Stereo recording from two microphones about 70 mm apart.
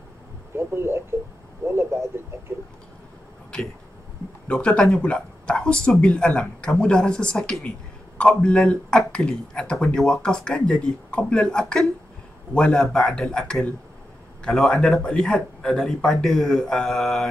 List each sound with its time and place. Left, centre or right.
0.6 s speech: right
4.5 s speech: centre
14.8 s speech: centre